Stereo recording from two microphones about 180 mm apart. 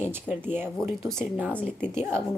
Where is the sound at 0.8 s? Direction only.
Centre (ahead or behind).